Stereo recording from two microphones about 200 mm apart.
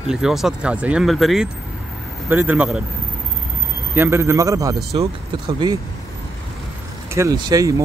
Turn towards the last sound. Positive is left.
turn(degrees=-15)  # may be behind; listen again after turning